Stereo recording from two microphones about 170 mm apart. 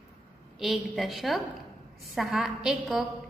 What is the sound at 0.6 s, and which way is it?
A woman's voice, centre (ahead or behind).